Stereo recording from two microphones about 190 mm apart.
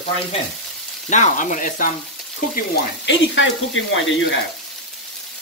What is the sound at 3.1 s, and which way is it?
Speech, 85° left.